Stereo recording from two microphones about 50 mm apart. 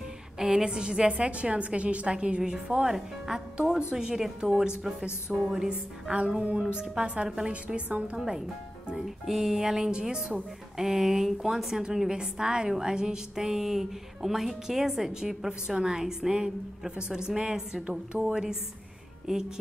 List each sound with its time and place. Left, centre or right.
0.4 s a woman's voice: centre
7.6 s a woman's voice: right
8.3 s a woman's voice: centre